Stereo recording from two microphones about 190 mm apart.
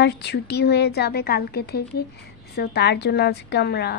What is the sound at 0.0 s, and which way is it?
A woman's voice, 60° left (ahead or behind).